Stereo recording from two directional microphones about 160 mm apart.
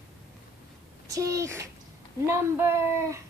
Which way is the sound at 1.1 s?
20° right (ahead or behind).